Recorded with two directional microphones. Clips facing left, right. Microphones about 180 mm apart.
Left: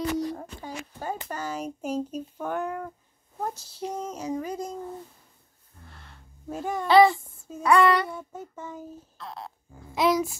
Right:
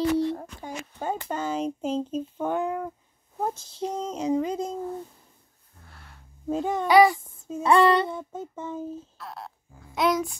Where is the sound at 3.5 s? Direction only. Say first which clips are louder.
Right 3 dB; 10° left (ahead or behind).